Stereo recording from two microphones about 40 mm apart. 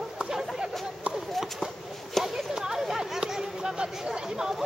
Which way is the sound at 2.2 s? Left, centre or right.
Centre.